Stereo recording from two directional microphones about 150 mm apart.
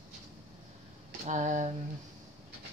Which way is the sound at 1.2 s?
55° right (ahead or behind).